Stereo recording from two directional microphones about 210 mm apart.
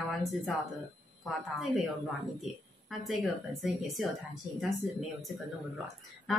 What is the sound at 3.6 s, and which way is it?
Speech, centre (ahead or behind).